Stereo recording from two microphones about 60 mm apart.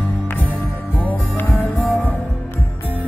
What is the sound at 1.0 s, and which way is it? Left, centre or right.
Music, left.